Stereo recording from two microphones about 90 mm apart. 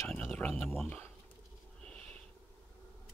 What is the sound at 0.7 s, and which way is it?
Speech, 20° left (ahead or behind).